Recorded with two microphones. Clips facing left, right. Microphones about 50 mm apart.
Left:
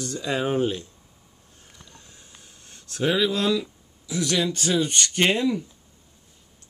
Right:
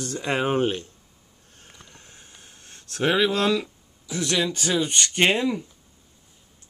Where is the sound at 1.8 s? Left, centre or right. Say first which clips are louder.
Right 1 dB; right.